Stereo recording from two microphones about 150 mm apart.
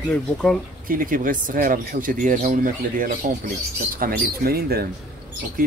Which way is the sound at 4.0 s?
90° right.